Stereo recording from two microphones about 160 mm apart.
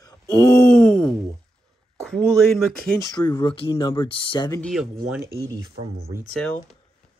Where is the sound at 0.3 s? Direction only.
15° left (ahead or behind).